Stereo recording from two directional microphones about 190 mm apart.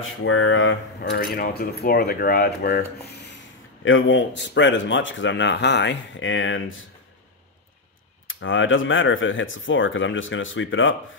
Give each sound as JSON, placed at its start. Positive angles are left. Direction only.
{"t": 0.2, "sound": "speech", "side_deg": 90}
{"t": 1.3, "sound": "speech", "side_deg": 50}
{"t": 3.8, "sound": "speech", "side_deg": 80}
{"t": 8.3, "sound": "speech", "side_deg": 90}